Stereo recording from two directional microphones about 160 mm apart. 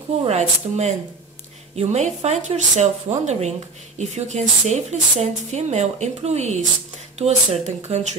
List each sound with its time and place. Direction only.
0.2 s speech: 40° right (ahead or behind)